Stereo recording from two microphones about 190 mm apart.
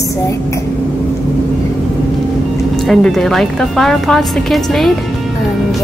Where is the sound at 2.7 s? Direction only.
Centre (ahead or behind).